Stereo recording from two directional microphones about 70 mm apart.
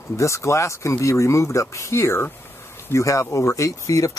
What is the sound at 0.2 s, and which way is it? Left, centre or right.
Speech, left.